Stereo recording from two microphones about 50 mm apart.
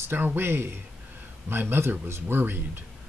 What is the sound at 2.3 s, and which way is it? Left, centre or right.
Speech, right.